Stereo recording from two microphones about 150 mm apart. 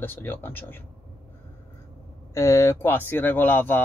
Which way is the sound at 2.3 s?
20° left (ahead or behind).